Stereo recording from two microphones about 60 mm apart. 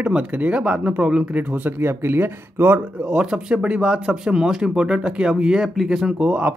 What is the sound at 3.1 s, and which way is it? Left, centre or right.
Speech, centre.